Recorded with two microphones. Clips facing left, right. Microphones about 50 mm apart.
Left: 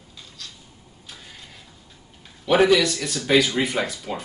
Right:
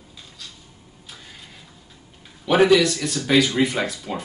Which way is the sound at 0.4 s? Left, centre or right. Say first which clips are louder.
Even; centre.